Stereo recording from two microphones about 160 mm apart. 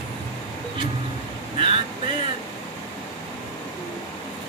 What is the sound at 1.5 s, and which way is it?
Vehicle, 35° right (ahead or behind).